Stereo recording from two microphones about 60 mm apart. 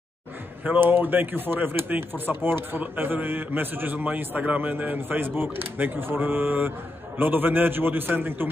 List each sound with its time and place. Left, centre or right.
0.7 s speech: right